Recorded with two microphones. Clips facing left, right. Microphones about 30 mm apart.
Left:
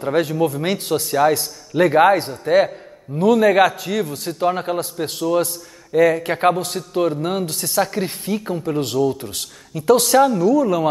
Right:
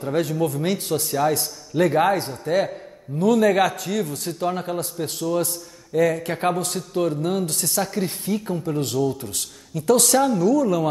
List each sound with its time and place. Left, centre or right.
0.0 s a man's voice: left
0.3 s speech: centre
0.6 s a man's voice: left